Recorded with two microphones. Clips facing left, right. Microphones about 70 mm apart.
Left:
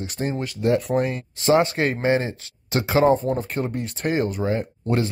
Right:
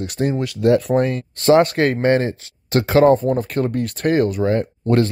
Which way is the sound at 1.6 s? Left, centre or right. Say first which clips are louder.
Right 5 dB; right.